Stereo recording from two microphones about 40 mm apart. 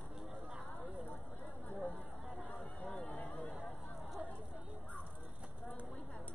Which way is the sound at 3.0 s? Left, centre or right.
Left.